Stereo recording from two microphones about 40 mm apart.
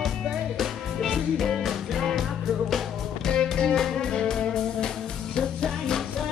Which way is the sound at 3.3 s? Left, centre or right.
Left.